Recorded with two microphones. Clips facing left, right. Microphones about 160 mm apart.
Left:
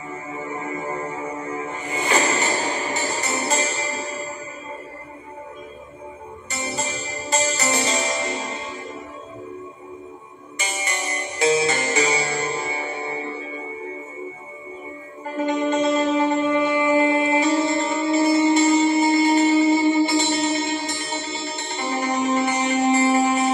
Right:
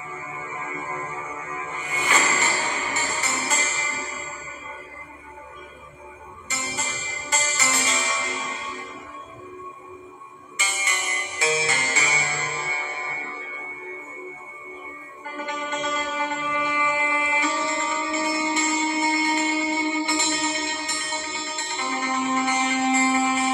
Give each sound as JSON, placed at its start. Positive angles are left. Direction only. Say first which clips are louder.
{"t": 0.1, "sound": "music", "louder": "left 7 dB", "side_deg": 35}
{"t": 6.5, "sound": "music", "louder": "left 5 dB", "side_deg": 35}
{"t": 10.6, "sound": "music", "louder": "left 4 dB", "side_deg": 35}
{"t": 11.7, "sound": "music", "louder": "left 6 dB", "side_deg": 20}
{"t": 12.0, "sound": "music", "louder": "left 7 dB", "side_deg": 35}
{"t": 15.2, "sound": "music", "louder": "left 10 dB", "side_deg": 30}